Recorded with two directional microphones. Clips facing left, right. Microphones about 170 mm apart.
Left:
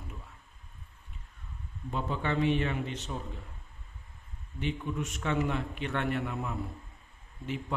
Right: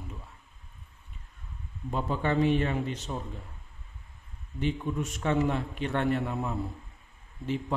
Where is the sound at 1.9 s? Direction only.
40° right (ahead or behind).